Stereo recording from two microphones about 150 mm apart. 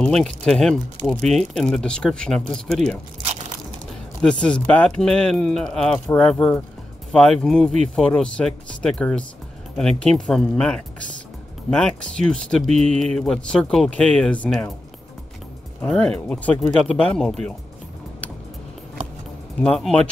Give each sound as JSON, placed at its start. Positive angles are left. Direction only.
{"t": 0.0, "sound": "speech", "side_deg": 5}
{"t": 4.2, "sound": "speech", "side_deg": 5}
{"t": 15.8, "sound": "speech", "side_deg": 5}
{"t": 19.6, "sound": "speech", "side_deg": 5}